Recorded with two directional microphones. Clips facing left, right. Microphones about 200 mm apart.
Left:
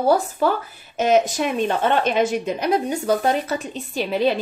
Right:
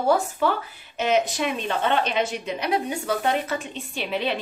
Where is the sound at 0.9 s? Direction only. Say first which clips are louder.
Left 5 dB; 45° left (ahead or behind).